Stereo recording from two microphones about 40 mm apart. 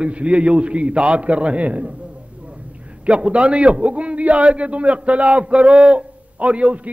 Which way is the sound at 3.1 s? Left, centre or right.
Right.